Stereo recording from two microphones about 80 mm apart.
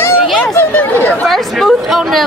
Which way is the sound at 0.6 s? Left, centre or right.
Left.